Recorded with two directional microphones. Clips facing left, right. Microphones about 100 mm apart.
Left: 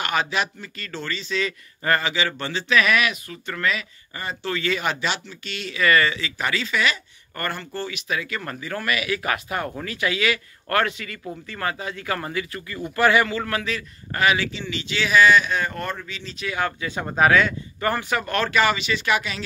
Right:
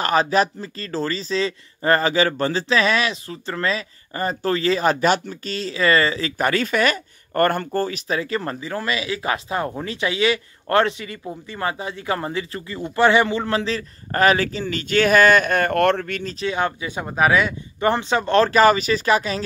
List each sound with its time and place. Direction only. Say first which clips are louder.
0.0 s speech: right 6 dB; 35° right (ahead or behind); by 16.3 s 55° right (ahead or behind)
16.3 s speech: right 2 dB; 25° right (ahead or behind)
17.0 s speech: even; 10° right (ahead or behind); by 19.4 s 35° right (ahead or behind)